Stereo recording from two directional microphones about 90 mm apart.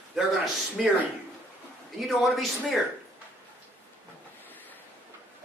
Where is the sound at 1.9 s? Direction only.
Centre (ahead or behind).